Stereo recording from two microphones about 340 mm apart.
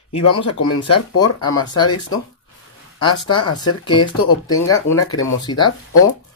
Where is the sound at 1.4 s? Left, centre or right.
Centre.